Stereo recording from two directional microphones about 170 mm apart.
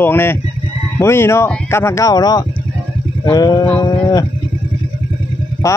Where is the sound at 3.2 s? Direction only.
25° left (ahead or behind).